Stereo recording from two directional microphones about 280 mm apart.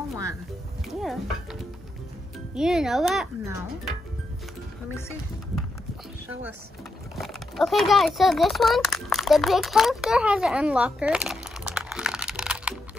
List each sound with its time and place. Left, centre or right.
0.8 s speech: centre
7.2 s a child's voice: centre